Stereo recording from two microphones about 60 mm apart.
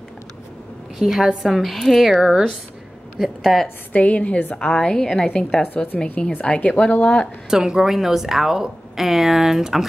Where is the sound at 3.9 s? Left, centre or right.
Left.